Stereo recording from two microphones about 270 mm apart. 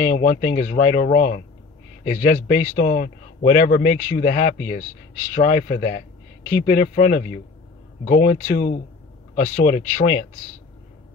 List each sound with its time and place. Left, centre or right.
0.0 s speech: left